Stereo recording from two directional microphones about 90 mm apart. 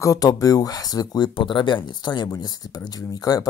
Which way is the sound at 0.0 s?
40° left (ahead or behind).